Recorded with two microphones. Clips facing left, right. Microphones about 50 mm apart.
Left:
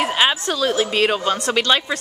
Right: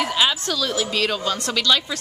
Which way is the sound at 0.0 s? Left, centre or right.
Left.